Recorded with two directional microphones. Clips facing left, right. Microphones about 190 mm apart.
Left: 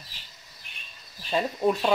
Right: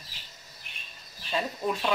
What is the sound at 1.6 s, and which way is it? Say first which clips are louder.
Speech: left 8 dB; 50° left (ahead or behind).